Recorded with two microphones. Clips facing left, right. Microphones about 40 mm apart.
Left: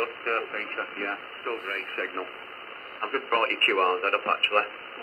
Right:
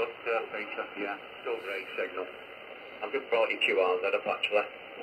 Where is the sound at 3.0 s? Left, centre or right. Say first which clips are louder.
Left 3 dB; left.